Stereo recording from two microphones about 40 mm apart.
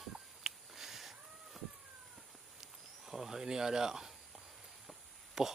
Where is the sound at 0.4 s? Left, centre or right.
Centre.